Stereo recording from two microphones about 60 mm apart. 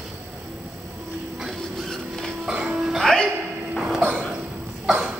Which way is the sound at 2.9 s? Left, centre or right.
Centre.